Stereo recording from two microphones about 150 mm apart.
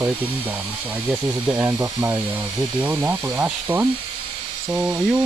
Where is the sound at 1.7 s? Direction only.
25° right (ahead or behind).